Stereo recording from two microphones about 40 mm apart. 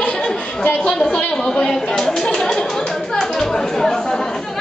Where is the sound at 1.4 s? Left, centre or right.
Left.